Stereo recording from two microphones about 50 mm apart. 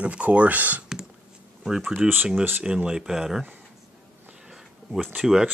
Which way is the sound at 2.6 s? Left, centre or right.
Centre.